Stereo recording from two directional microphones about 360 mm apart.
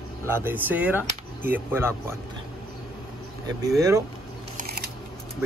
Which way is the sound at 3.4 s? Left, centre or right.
Centre.